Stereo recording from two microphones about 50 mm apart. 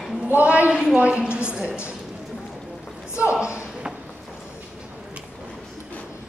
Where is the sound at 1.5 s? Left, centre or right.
Centre.